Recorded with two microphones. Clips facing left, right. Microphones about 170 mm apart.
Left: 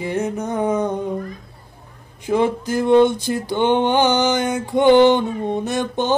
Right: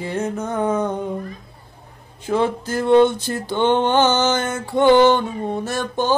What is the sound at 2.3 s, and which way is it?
Music, 15° left (ahead or behind).